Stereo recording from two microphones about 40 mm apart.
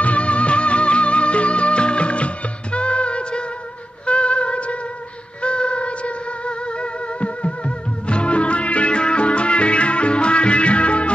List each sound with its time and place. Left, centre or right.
0.0 s music: left